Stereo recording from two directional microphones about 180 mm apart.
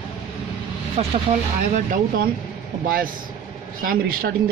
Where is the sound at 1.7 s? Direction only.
45° right (ahead or behind).